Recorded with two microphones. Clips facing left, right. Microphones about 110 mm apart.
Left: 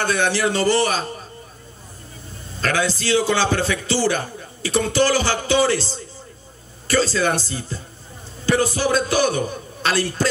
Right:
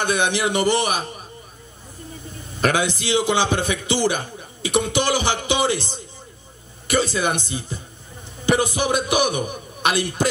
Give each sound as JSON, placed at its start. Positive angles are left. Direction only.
{"t": 0.0, "sound": "a man's voice", "side_deg": -15}
{"t": 2.5, "sound": "a man's voice", "side_deg": -15}